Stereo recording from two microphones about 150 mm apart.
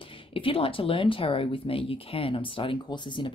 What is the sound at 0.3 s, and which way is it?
A woman's voice, 40° left (ahead or behind).